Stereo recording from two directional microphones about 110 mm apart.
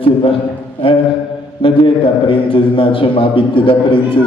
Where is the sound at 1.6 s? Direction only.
50° left (ahead or behind).